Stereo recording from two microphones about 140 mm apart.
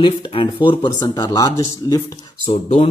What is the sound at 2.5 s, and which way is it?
Speech, 50° left (ahead or behind).